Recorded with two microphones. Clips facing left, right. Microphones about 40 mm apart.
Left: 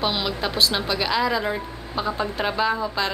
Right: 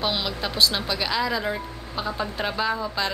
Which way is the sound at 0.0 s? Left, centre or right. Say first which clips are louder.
Left 2 dB; centre.